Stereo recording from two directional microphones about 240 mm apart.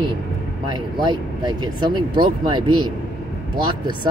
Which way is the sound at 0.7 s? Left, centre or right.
Centre.